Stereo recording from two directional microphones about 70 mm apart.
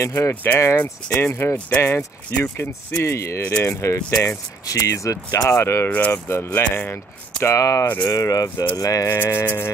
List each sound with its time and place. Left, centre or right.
0.0 s speech: left
0.3 s speech: left
0.7 s speech: left
5.5 s speech: left
5.9 s speech: left
6.1 s speech: left
7.4 s speech: left
9.1 s speech: left